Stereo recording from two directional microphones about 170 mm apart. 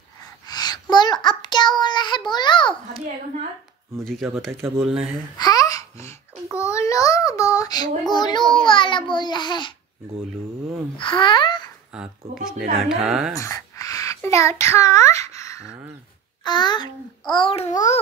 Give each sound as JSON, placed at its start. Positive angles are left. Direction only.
{"t": 0.2, "sound": "sneeze", "side_deg": 25}
{"t": 1.4, "sound": "child singing", "side_deg": 25}
{"t": 4.0, "sound": "speech", "side_deg": 0}
{"t": 4.5, "sound": "speech", "side_deg": -15}
{"t": 5.4, "sound": "babbling", "side_deg": 20}
{"t": 8.1, "sound": "a child's voice", "side_deg": 25}
{"t": 11.0, "sound": "a child's voice", "side_deg": 30}
{"t": 12.8, "sound": "speech", "side_deg": -5}
{"t": 13.3, "sound": "a child's voice", "side_deg": 20}